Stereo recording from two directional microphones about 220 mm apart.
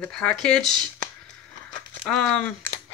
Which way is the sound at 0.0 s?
5° left (ahead or behind).